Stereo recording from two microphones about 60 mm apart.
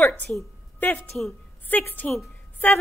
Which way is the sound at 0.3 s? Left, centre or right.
Left.